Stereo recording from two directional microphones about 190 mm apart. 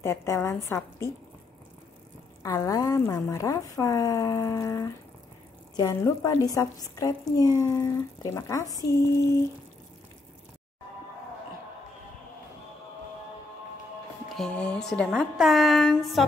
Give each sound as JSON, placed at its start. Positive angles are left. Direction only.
{"t": 0.0, "sound": "a woman's voice", "side_deg": 15}
{"t": 2.4, "sound": "a woman's voice", "side_deg": 15}
{"t": 14.3, "sound": "a woman's voice", "side_deg": 5}